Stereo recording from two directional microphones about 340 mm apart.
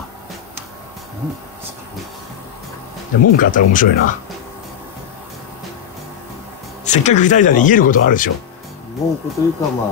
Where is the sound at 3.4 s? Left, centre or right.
Left.